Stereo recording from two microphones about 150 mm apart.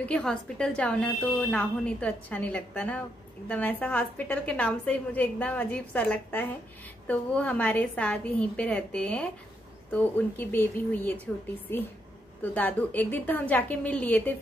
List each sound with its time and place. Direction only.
0.0 s a woman's voice: 5° left (ahead or behind)